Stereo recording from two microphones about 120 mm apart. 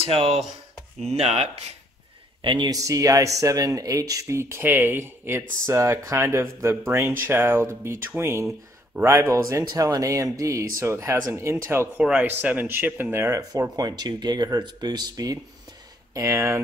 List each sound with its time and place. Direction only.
0.0 s speech: 55° right (ahead or behind)
2.4 s speech: 40° right (ahead or behind)
2.7 s speech: 30° right (ahead or behind)
12.0 s speech: 5° right (ahead or behind); by 16.6 s 25° right (ahead or behind)